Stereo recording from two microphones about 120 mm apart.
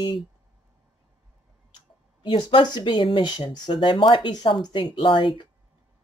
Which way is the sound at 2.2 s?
45° left (ahead or behind).